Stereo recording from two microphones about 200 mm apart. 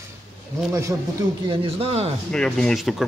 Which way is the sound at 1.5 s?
30° right (ahead or behind).